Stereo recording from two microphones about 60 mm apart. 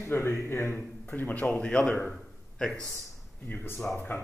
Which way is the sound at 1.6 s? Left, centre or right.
Centre.